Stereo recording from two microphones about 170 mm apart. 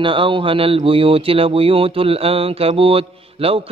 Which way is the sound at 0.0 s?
30° right (ahead or behind).